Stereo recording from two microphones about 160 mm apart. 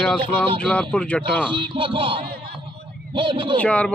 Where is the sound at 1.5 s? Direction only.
35° right (ahead or behind).